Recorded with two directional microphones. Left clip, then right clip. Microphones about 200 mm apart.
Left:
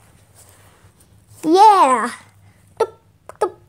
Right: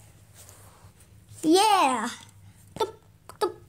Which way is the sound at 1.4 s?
5° left (ahead or behind).